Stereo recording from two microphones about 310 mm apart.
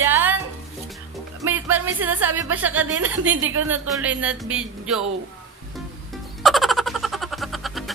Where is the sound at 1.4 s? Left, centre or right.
Centre.